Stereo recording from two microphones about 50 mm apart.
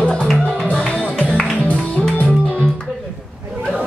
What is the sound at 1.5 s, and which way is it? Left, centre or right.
Music, left.